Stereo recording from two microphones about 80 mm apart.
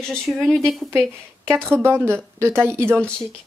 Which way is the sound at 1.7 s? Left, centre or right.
Right.